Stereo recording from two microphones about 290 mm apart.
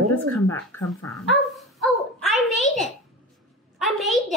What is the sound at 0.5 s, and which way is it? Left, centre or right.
Speech, left.